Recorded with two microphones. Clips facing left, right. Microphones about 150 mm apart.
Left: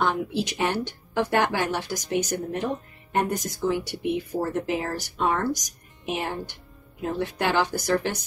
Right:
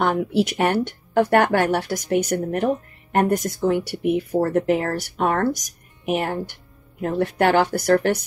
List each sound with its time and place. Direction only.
0.0 s speech: 55° right (ahead or behind)